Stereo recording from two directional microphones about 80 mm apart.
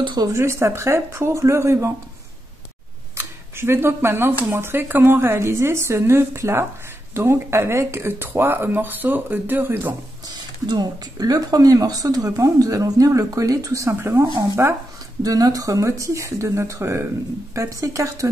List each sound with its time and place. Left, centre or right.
0.4 s speech: right
3.2 s speech: right
10.3 s speech: right
14.2 s speech: right
15.2 s speech: right